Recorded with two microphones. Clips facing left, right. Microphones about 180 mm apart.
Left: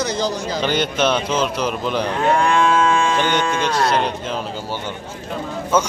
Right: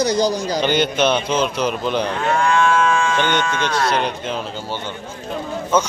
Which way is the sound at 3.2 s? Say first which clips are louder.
Even; 35° left (ahead or behind).